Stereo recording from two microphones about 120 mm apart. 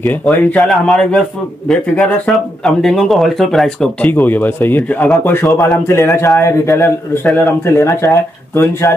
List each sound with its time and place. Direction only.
0.0 s a man's voice: 10° left (ahead or behind)
4.1 s a man's voice: 15° left (ahead or behind)